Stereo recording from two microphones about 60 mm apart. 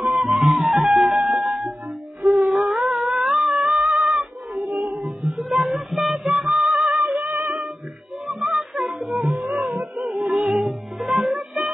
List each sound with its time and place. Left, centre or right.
0.1 s music: centre
2.2 s a sound: centre
4.6 s music: right
5.2 s music: centre
8.3 s music: centre
9.0 s music: centre
10.1 s music: centre